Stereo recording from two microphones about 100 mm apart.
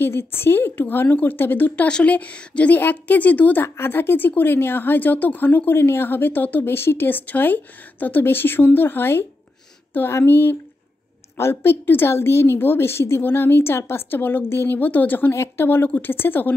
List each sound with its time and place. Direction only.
0.0 s a woman's voice: 25° left (ahead or behind)